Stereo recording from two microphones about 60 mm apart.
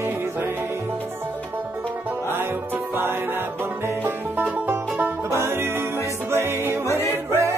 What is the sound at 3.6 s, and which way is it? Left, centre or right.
Music, right.